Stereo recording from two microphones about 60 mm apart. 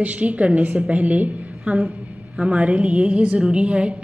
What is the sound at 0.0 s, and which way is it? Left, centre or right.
A woman's voice, right.